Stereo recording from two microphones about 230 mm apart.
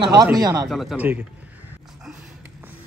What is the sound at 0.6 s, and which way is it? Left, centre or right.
Speech, centre.